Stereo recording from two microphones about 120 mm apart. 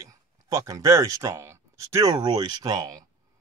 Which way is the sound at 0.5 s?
25° right (ahead or behind).